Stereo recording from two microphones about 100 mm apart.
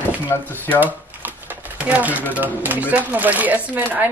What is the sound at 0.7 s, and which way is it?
Typewriter, 20° right (ahead or behind).